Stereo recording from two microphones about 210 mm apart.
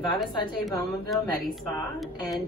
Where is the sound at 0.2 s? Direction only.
Centre (ahead or behind).